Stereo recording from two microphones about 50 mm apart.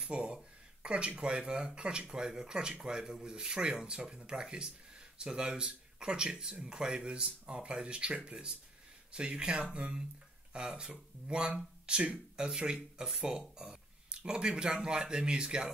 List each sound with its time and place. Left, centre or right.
0.1 s speech: right